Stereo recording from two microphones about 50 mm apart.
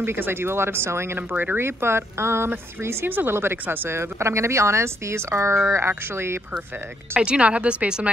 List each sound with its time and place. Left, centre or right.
0.0 s speech: right
3.1 s speech: right
3.9 s speech: right
5.7 s speech: right
7.2 s speech: right